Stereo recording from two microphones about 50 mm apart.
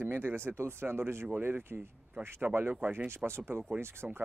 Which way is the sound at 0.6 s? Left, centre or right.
Right.